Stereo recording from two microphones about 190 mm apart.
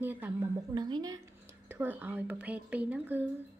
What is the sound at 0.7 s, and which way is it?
A woman's voice, 20° right (ahead or behind).